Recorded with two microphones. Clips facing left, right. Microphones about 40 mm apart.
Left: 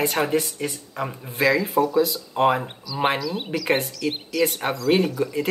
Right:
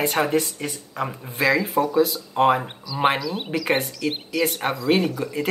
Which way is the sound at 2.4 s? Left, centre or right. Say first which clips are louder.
Right 1 dB; centre.